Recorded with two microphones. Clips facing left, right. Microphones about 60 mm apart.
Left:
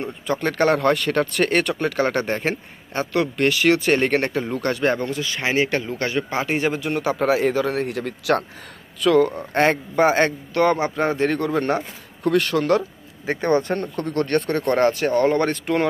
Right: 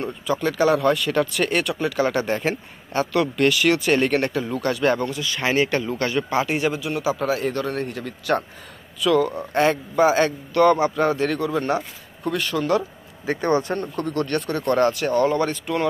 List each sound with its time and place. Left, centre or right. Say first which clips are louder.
0.3 s speech: even; left
9.0 s speech: left 2 dB; left
12.2 s speech: left 5 dB; left
12.7 s speech: left 1 dB; left